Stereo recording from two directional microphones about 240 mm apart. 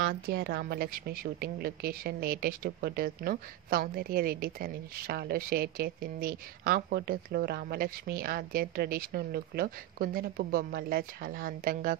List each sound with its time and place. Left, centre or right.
0.1 s a woman's voice: right